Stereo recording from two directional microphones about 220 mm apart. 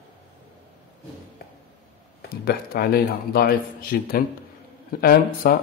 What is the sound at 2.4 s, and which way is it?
Speech, 45° left (ahead or behind).